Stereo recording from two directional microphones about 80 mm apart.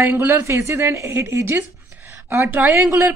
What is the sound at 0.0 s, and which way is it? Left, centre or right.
A woman's voice, right.